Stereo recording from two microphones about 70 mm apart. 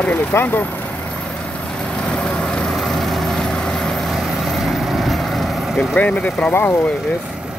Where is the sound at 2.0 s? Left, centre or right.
Centre.